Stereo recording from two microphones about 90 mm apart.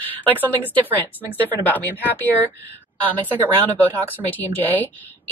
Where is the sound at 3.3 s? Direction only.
20° right (ahead or behind).